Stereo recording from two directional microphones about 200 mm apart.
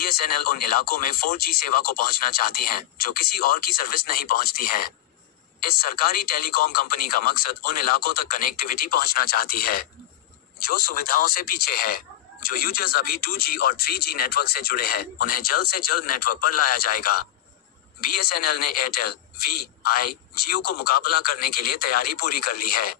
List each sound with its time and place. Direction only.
0.0 s speech: 45° left (ahead or behind)
18.2 s speech: 45° left (ahead or behind)